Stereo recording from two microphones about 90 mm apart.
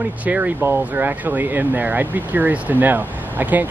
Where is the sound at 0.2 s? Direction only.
15° right (ahead or behind).